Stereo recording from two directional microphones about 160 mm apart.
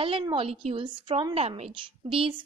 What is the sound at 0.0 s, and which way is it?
A woman's voice, 30° right (ahead or behind).